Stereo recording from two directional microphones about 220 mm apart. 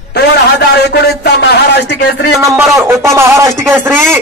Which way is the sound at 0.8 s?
50° left (ahead or behind).